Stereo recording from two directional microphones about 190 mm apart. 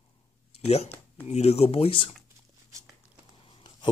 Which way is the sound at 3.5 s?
25° left (ahead or behind).